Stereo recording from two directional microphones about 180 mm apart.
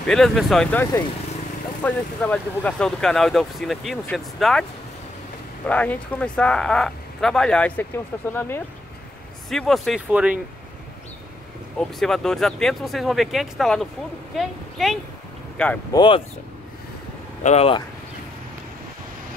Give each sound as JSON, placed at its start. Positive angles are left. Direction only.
{"t": 0.0, "sound": "speech", "side_deg": 5}
{"t": 5.7, "sound": "speech", "side_deg": 10}
{"t": 9.5, "sound": "speech", "side_deg": 0}
{"t": 12.0, "sound": "a woman's voice", "side_deg": 0}
{"t": 15.9, "sound": "speech", "side_deg": 25}
{"t": 17.4, "sound": "speech", "side_deg": 35}